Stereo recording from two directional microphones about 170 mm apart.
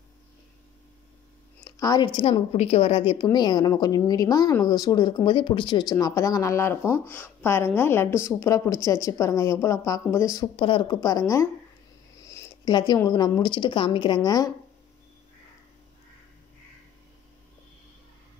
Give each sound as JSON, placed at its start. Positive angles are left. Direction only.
{"t": 1.6, "sound": "a woman's voice", "side_deg": 20}
{"t": 10.5, "sound": "a woman's voice", "side_deg": 30}